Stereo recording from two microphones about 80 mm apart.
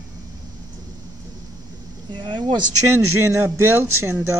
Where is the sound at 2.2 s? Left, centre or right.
Right.